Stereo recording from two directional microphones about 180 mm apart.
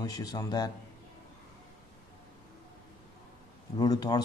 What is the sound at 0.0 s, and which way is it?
Speech, 20° left (ahead or behind).